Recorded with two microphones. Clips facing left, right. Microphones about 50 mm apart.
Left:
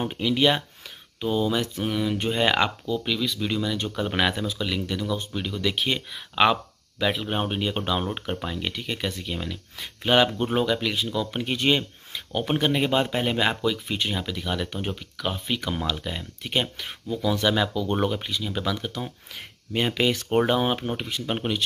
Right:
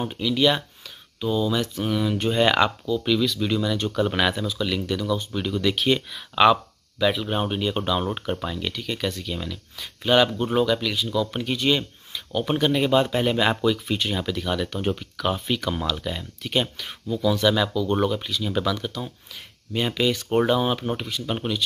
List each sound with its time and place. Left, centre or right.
0.0 s speech: left
1.8 s speech: centre
5.4 s speech: centre
15.5 s speech: centre
16.7 s speech: left
18.4 s speech: centre
18.9 s speech: left
20.8 s speech: centre
21.1 s speech: left